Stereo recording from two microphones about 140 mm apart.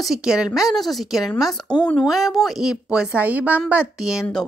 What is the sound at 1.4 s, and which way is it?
Speech, 30° left (ahead or behind).